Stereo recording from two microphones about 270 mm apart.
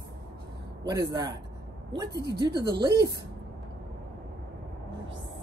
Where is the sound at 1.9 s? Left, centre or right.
Centre.